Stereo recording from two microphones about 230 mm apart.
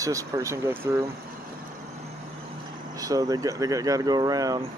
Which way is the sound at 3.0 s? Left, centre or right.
Centre.